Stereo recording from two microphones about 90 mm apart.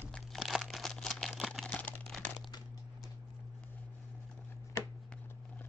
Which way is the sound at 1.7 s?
20° left (ahead or behind).